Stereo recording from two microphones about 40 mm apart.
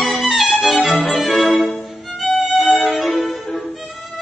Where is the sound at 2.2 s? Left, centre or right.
Centre.